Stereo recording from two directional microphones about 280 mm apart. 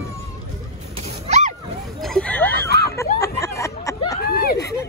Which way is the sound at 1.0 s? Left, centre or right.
Right.